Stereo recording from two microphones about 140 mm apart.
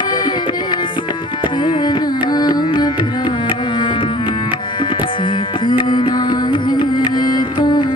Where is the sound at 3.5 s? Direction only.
35° left (ahead or behind).